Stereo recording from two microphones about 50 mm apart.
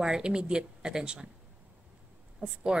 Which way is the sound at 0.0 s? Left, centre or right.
Centre.